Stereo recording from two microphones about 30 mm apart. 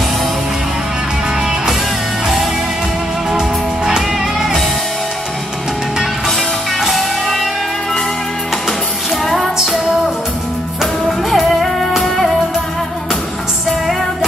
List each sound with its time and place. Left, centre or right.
3.3 s music: centre
6.8 s music: centre
9.2 s music: centre
10.8 s music: centre